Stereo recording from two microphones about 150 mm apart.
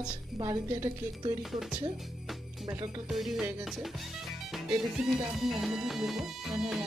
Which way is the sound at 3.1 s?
Centre (ahead or behind).